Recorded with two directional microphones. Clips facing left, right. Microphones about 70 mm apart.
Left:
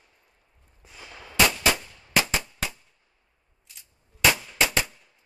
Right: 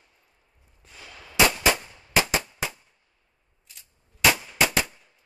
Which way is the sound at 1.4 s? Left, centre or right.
Centre.